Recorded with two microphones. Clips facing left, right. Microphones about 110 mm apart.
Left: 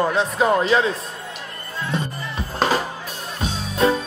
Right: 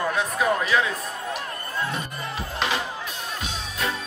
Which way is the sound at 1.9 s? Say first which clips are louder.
Left 4 dB; 35° left (ahead or behind).